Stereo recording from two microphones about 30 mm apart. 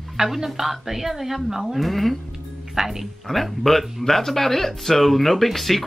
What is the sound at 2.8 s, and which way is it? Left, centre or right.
Speech, right.